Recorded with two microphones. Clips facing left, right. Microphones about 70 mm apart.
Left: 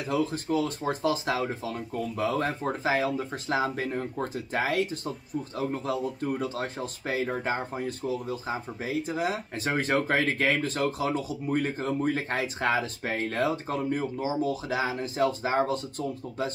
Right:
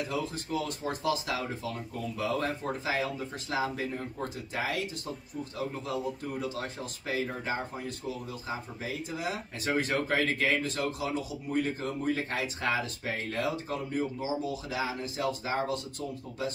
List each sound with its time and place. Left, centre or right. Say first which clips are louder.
0.1 s speech: left 6 dB; left
6.4 s speech: left 4 dB; left